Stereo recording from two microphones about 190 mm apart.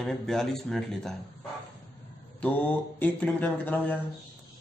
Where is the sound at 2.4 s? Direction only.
5° left (ahead or behind).